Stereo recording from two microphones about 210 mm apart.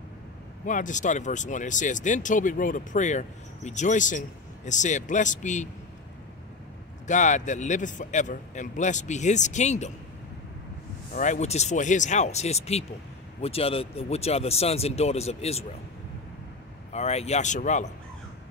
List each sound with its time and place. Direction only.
0.7 s speech: 35° left (ahead or behind)
7.1 s speech: 35° left (ahead or behind)
11.1 s speech: 35° left (ahead or behind)
16.9 s speech: 30° left (ahead or behind)